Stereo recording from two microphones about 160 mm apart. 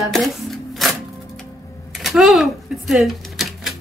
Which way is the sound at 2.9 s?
Centre (ahead or behind).